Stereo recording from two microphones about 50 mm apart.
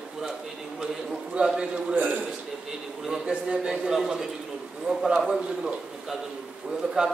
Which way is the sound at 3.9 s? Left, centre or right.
Centre.